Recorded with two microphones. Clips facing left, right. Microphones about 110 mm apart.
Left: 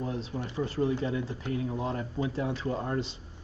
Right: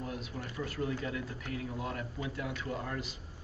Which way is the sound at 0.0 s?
25° left (ahead or behind).